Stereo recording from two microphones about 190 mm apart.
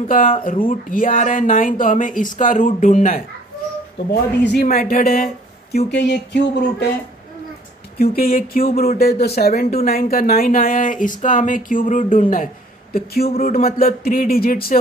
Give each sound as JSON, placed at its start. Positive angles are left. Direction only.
{"t": 0.7, "sound": "speech", "side_deg": 45}
{"t": 4.1, "sound": "speech", "side_deg": 60}
{"t": 8.0, "sound": "speech", "side_deg": 50}